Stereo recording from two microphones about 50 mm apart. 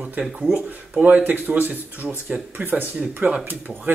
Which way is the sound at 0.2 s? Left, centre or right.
Centre.